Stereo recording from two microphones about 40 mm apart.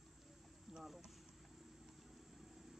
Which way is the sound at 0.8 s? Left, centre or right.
Centre.